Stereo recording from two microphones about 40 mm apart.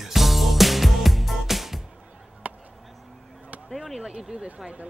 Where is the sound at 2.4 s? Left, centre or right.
Right.